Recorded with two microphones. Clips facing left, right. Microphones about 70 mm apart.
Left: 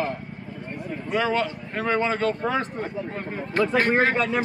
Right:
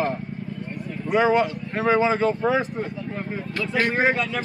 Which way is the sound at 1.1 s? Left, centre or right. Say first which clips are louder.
Right 5 dB; centre.